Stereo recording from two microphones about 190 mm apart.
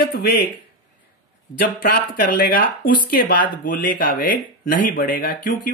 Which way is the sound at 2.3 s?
50° left (ahead or behind).